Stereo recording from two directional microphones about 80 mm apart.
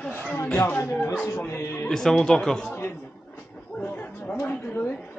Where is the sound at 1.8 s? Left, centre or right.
Centre.